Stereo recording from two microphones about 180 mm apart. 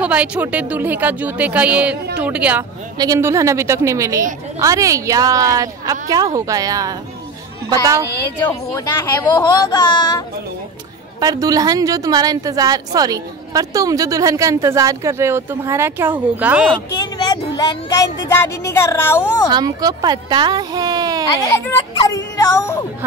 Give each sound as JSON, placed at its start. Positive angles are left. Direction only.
{"t": 0.0, "sound": "a woman's voice", "side_deg": -5}
{"t": 8.4, "sound": "a woman's voice", "side_deg": 15}
{"t": 9.3, "sound": "speech", "side_deg": 25}
{"t": 11.1, "sound": "a woman's voice", "side_deg": -20}
{"t": 18.3, "sound": "a woman's voice", "side_deg": 15}
{"t": 19.5, "sound": "a woman's voice", "side_deg": -20}
{"t": 21.3, "sound": "a woman's voice", "side_deg": 15}